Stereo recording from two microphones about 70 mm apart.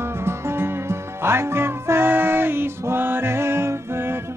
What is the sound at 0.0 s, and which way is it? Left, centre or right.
Music, right.